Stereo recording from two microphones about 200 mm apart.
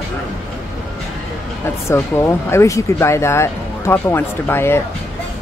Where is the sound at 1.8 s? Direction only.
15° left (ahead or behind).